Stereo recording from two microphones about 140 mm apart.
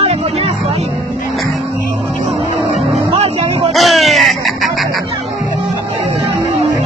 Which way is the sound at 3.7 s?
Centre (ahead or behind).